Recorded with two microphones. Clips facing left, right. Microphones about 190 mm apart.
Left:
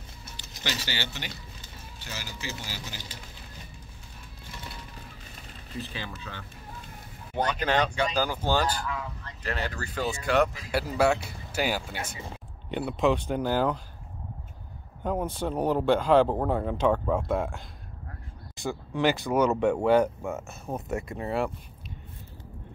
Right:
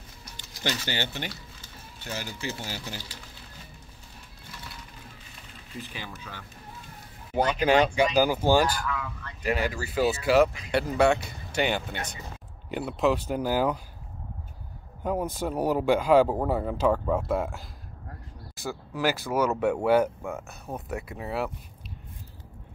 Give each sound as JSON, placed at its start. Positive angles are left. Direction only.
{"t": 0.7, "sound": "speech", "side_deg": -50}
{"t": 5.8, "sound": "a man's voice", "side_deg": -10}
{"t": 8.8, "sound": "speech", "side_deg": 30}
{"t": 9.4, "sound": "a man's voice", "side_deg": -10}
{"t": 15.0, "sound": "a man's voice", "side_deg": -10}
{"t": 18.6, "sound": "speech", "side_deg": -5}